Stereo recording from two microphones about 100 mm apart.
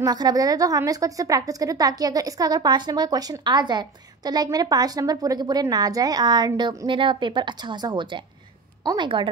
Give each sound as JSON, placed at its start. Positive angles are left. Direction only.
{"t": 0.0, "sound": "a woman's voice", "side_deg": -40}
{"t": 6.9, "sound": "a woman's voice", "side_deg": -55}